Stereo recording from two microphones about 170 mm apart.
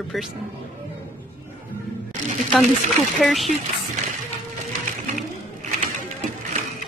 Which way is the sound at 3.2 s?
Centre (ahead or behind).